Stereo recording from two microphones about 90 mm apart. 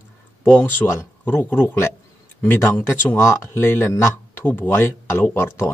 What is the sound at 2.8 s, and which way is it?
Speech, 30° left (ahead or behind).